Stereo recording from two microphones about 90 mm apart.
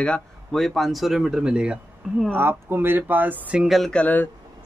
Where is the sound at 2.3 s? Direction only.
25° right (ahead or behind).